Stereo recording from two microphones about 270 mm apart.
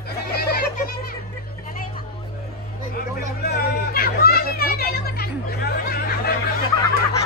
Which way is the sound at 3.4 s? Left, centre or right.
Left.